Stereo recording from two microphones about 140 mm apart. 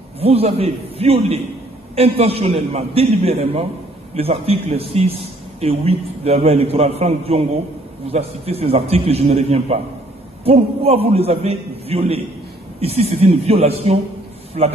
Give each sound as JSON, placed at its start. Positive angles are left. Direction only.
{"t": 0.2, "sound": "a man's voice", "side_deg": -45}